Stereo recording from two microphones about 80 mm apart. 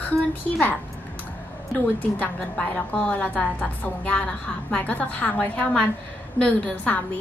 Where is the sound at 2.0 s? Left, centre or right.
Left.